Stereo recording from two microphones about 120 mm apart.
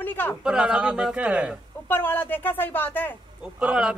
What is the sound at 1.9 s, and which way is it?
Speech, 15° left (ahead or behind).